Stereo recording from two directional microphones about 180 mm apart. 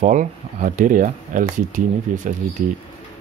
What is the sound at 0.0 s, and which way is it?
Speech, 45° right (ahead or behind).